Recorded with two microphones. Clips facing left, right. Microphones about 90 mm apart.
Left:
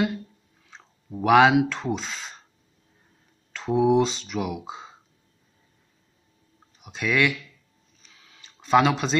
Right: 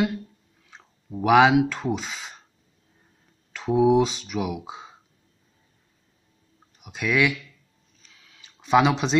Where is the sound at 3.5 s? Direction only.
10° right (ahead or behind).